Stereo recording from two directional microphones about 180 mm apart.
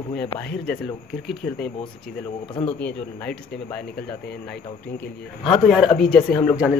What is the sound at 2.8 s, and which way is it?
Speech, 5° left (ahead or behind).